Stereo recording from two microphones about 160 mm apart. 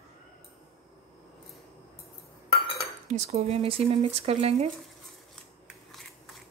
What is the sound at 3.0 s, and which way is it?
Speech, 45° right (ahead or behind).